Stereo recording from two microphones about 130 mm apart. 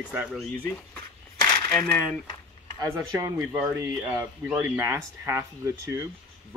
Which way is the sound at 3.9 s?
5° right (ahead or behind).